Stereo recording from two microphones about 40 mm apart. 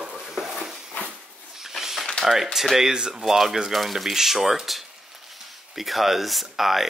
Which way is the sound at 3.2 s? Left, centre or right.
Centre.